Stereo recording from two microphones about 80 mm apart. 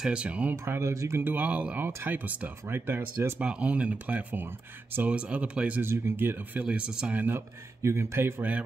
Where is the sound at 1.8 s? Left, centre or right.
Right.